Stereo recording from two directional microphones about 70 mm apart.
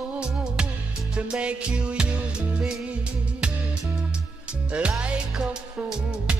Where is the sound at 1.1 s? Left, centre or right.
Centre.